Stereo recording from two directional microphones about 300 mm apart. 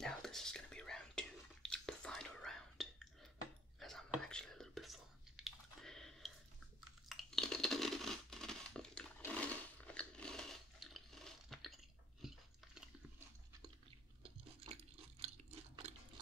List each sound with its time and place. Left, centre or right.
0.0 s whispering: centre
7.1 s crunch: centre
14.6 s a sound: centre